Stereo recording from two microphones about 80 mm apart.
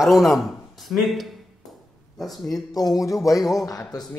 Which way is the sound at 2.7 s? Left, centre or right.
Left.